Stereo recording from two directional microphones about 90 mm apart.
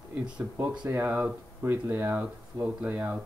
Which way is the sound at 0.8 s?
25° right (ahead or behind).